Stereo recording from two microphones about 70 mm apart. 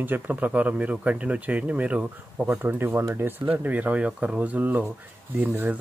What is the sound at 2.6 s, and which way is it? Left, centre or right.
Speech, right.